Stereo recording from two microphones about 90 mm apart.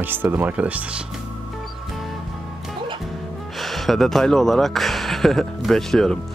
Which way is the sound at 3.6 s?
Centre (ahead or behind).